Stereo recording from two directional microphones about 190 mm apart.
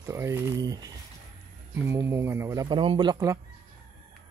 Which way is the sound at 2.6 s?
25° right (ahead or behind).